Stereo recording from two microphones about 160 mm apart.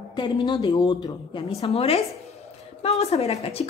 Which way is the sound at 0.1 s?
30° left (ahead or behind).